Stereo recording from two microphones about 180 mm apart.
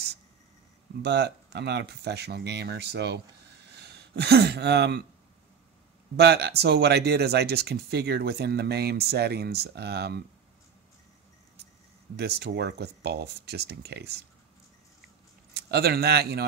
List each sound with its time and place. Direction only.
1.0 s speech: 70° right (ahead or behind)
6.1 s speech: 65° right (ahead or behind)
12.2 s speech: 65° right (ahead or behind)
15.5 s a man's voice: 65° right (ahead or behind)